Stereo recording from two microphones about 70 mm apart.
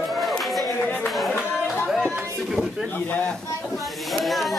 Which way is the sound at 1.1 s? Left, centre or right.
Centre.